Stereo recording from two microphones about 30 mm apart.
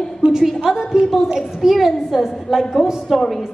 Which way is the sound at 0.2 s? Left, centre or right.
Right.